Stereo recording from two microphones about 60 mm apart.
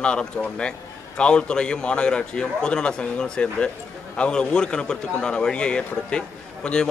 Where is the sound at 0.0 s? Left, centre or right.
Centre.